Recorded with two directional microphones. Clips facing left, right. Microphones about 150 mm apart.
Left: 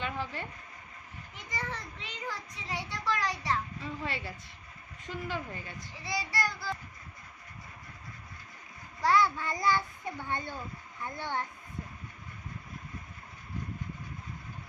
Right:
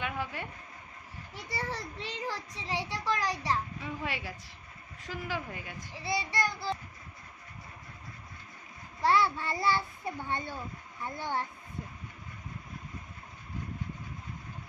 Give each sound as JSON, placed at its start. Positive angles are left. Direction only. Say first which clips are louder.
{"t": 0.0, "sound": "a woman's voice", "louder": "even", "side_deg": -10}
{"t": 1.3, "sound": "a child's voice", "louder": "right 2 dB", "side_deg": -35}
{"t": 3.8, "sound": "a woman's voice", "louder": "even", "side_deg": -10}
{"t": 6.0, "sound": "child singing", "louder": "right 2 dB", "side_deg": -25}
{"t": 9.0, "sound": "child singing", "louder": "even", "side_deg": -30}
{"t": 10.0, "sound": "a woman's voice", "louder": "right 1 dB", "side_deg": -15}